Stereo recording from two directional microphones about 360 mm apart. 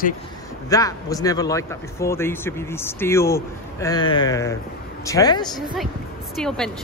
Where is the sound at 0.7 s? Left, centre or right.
Centre.